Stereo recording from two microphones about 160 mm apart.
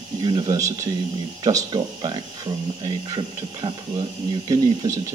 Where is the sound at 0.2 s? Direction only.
25° right (ahead or behind).